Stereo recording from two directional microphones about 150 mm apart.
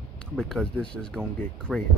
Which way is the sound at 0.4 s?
5° left (ahead or behind).